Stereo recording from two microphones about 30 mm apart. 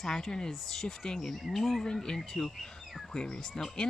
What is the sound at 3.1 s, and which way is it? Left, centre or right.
Speech, left.